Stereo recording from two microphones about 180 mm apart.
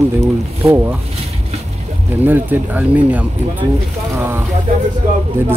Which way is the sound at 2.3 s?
10° right (ahead or behind).